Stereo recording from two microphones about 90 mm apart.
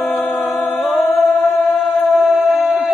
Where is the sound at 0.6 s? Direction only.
Centre (ahead or behind).